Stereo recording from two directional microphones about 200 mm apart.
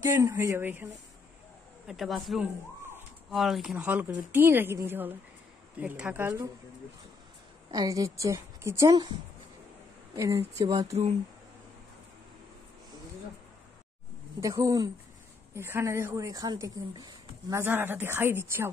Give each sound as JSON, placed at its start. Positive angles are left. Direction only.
{"t": 0.0, "sound": "a woman's voice", "side_deg": -10}
{"t": 1.9, "sound": "a woman's voice", "side_deg": 0}
{"t": 7.7, "sound": "a woman's voice", "side_deg": -20}
{"t": 10.1, "sound": "a woman's voice", "side_deg": -15}
{"t": 14.4, "sound": "a woman's voice", "side_deg": -15}